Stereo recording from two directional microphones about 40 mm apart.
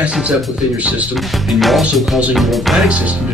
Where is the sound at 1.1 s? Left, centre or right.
Centre.